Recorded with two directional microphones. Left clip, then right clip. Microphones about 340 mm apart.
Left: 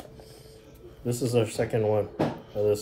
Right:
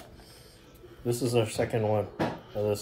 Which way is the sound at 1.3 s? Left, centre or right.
Centre.